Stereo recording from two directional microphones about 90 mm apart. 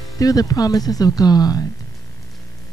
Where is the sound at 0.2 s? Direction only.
40° left (ahead or behind).